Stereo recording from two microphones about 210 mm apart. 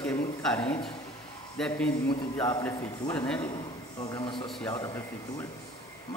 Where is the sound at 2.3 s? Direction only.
15° left (ahead or behind).